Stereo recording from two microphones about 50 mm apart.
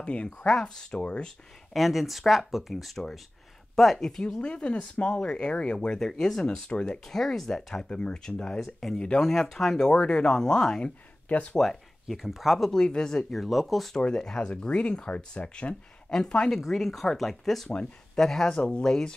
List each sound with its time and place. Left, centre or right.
0.0 s speech: left
0.5 s speech: centre
1.7 s speech: centre
4.2 s speech: left
5.9 s speech: centre
7.1 s speech: centre
8.5 s speech: centre
10.8 s speech: left
11.5 s speech: centre
12.7 s speech: centre
13.3 s speech: centre
14.0 s speech: centre
16.5 s speech: centre
18.6 s speech: centre